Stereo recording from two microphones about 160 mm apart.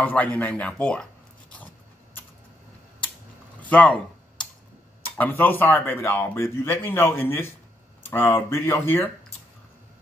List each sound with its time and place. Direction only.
0.0 s speech: 10° left (ahead or behind)
3.6 s computer keyboard: 10° left (ahead or behind)
5.1 s speech: 10° left (ahead or behind)